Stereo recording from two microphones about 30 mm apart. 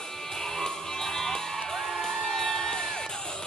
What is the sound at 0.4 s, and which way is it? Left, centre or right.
Music, centre.